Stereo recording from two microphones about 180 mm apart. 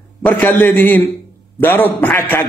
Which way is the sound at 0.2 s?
10° left (ahead or behind).